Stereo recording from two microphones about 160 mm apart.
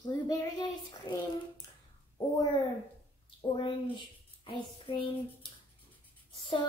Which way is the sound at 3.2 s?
30° left (ahead or behind).